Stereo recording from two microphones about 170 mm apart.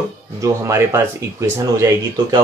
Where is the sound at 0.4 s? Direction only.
15° right (ahead or behind).